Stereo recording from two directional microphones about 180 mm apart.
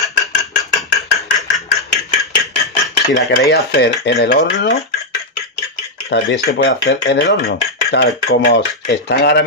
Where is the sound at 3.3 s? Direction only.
65° left (ahead or behind).